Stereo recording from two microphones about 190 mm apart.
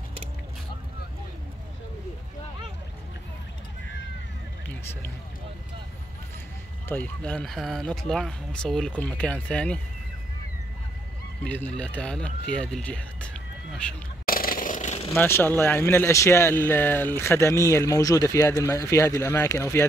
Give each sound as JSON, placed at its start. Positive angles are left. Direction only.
{"t": 6.9, "sound": "speech", "side_deg": 10}
{"t": 11.4, "sound": "speech", "side_deg": 10}
{"t": 14.2, "sound": "a sound", "side_deg": 50}
{"t": 15.1, "sound": "speech", "side_deg": 10}